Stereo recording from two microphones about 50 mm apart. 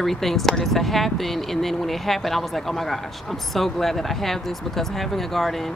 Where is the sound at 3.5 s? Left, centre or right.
Centre.